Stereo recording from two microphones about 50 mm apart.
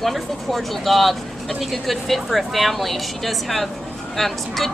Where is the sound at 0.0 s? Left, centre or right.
Centre.